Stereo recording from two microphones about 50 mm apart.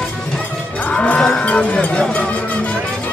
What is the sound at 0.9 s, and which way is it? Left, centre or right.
Music, left.